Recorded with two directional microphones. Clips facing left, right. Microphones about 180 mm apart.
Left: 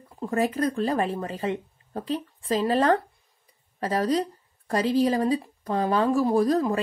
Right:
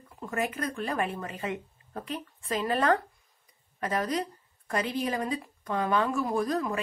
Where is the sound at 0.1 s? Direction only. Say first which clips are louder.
Left 7 dB; 30° left (ahead or behind).